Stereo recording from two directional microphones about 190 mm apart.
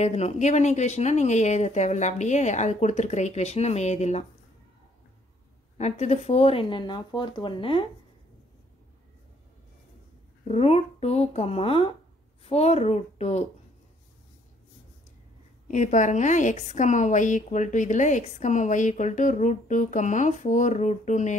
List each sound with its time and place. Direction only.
0.0 s a woman's voice: 35° left (ahead or behind)
5.8 s speech: 35° left (ahead or behind)
10.5 s a woman's voice: 35° left (ahead or behind)
15.7 s a woman's voice: 40° left (ahead or behind)